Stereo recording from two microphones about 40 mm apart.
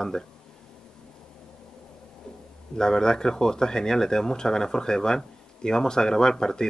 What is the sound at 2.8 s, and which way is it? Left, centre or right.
Speech, centre.